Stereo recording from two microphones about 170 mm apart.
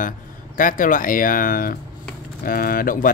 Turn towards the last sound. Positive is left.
turn(degrees=55)  # may be behind; listen again after turning